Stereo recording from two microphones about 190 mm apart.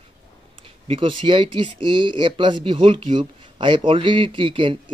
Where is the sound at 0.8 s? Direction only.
25° right (ahead or behind).